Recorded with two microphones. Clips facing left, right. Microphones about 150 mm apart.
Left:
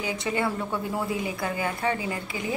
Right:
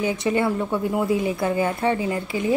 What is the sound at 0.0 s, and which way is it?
A woman's voice, 20° right (ahead or behind).